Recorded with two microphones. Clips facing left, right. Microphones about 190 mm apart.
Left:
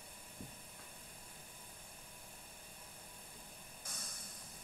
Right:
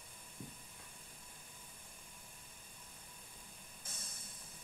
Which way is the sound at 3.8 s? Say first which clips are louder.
Left 2 dB; 25° right (ahead or behind).